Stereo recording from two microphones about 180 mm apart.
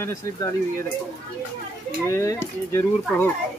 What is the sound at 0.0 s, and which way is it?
Speech, 15° left (ahead or behind).